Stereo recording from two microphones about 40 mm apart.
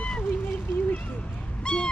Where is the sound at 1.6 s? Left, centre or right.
Left.